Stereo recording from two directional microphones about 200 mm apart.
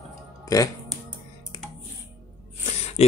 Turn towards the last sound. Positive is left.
turn(degrees=30)  # may be behind; listen again after turning